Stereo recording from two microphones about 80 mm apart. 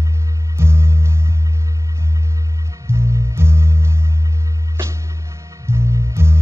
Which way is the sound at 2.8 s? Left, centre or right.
Right.